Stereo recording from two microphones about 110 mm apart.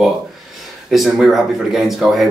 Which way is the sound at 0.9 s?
Centre (ahead or behind).